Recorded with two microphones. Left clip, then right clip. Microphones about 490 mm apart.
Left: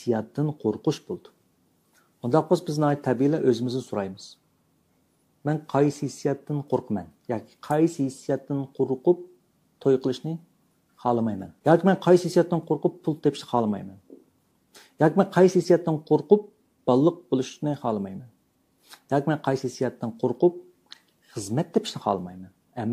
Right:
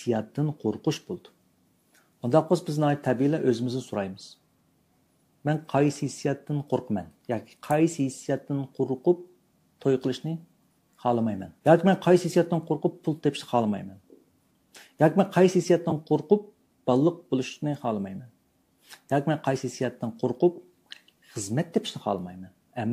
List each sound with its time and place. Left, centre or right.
0.0 s speech: right
5.4 s speech: right